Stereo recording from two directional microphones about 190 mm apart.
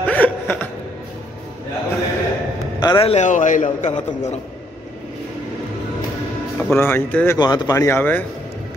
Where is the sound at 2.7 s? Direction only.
25° left (ahead or behind); by 3.9 s 40° left (ahead or behind).